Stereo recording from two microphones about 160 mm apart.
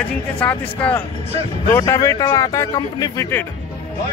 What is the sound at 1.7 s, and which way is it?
Speech, 20° left (ahead or behind).